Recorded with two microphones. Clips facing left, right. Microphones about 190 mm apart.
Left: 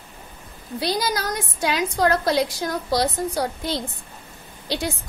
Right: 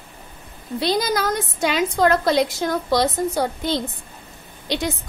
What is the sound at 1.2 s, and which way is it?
A woman's voice, 25° right (ahead or behind).